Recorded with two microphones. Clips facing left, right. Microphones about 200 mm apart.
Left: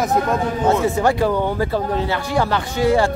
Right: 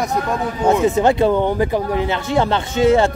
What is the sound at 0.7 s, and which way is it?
Speech, 20° right (ahead or behind).